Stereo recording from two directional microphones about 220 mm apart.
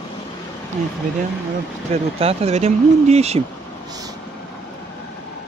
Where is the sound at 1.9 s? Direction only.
25° right (ahead or behind).